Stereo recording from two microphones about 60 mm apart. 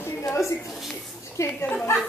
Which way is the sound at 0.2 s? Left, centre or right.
Left.